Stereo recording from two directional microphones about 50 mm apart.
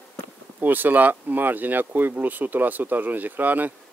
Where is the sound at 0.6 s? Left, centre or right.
Right.